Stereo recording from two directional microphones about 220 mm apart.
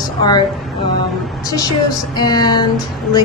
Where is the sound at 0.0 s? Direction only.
20° left (ahead or behind).